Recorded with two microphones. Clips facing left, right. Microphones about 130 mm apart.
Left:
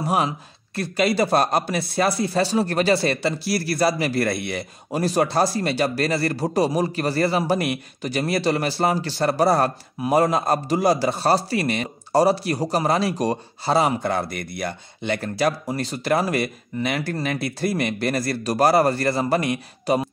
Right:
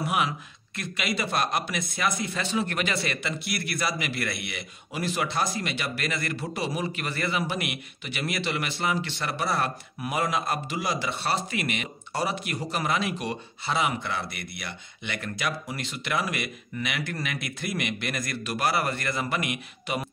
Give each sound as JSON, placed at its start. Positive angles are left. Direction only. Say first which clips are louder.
{"t": 0.0, "sound": "speech", "louder": "left 5 dB", "side_deg": 35}